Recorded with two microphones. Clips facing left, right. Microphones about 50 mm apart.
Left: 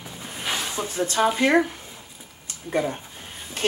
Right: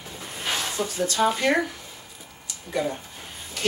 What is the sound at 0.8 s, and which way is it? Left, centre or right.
Speech, left.